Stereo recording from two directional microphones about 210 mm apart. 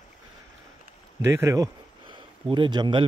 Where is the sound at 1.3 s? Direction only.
15° right (ahead or behind).